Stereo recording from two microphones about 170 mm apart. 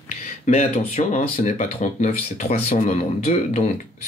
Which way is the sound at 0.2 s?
40° left (ahead or behind).